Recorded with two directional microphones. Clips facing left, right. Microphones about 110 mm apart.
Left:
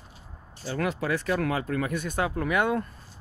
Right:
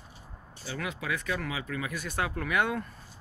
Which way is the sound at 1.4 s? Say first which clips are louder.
Left 7 dB; 50° left (ahead or behind).